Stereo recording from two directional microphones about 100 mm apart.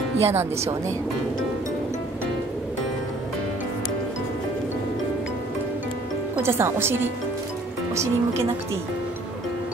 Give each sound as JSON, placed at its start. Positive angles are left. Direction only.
{"t": 0.2, "sound": "speech", "side_deg": -25}
{"t": 6.4, "sound": "speech", "side_deg": -25}